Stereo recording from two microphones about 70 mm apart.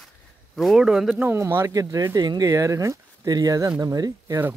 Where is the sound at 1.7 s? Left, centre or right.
Right.